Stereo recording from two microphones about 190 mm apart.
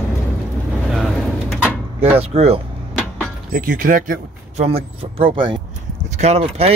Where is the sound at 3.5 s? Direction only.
45° right (ahead or behind).